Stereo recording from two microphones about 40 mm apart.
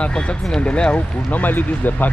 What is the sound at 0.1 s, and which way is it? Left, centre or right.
Speech, left.